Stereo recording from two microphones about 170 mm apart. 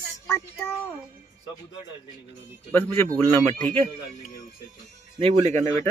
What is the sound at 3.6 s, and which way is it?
Speech, 35° right (ahead or behind).